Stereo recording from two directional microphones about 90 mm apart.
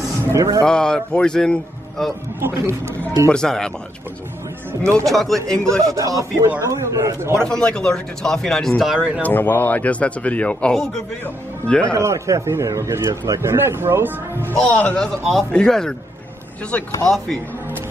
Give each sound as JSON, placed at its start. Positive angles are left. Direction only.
{"t": 0.3, "sound": "a man's voice", "side_deg": -35}
{"t": 0.7, "sound": "speech", "side_deg": 10}
{"t": 2.4, "sound": "a man's voice", "side_deg": -30}
{"t": 3.3, "sound": "speech", "side_deg": 5}
{"t": 5.0, "sound": "speech", "side_deg": 0}
{"t": 5.9, "sound": "a man's voice", "side_deg": -40}
{"t": 7.4, "sound": "speech", "side_deg": 10}
{"t": 8.9, "sound": "speech", "side_deg": -10}
{"t": 9.2, "sound": "a man's voice", "side_deg": 20}
{"t": 11.9, "sound": "a man's voice", "side_deg": -35}
{"t": 14.5, "sound": "speech", "side_deg": 15}